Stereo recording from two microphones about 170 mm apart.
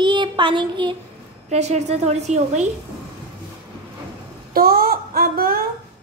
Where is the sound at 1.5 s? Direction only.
40° right (ahead or behind).